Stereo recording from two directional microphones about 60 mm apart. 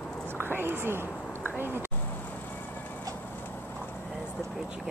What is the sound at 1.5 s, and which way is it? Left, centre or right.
Speech, right.